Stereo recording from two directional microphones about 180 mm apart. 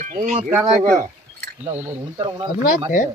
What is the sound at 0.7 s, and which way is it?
Speech, 45° right (ahead or behind).